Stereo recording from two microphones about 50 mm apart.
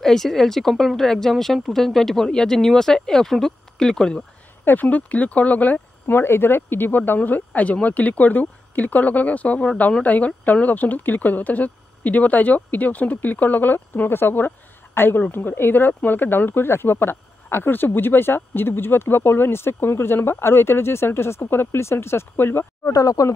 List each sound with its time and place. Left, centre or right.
0.0 s speech: centre
4.6 s speech: left
6.1 s speech: left